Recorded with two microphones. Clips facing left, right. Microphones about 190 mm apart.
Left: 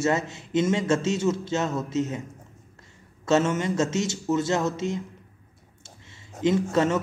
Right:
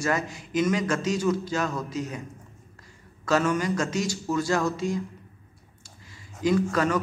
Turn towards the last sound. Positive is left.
turn(degrees=25)  # may be behind; listen again after turning